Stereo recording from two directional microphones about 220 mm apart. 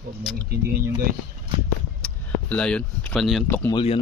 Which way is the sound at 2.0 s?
5° left (ahead or behind).